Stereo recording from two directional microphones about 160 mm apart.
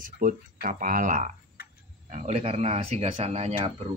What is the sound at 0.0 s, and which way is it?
Speech, 60° right (ahead or behind).